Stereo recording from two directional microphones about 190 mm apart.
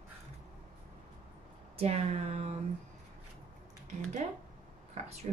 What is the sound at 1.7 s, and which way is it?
Speech, 35° right (ahead or behind).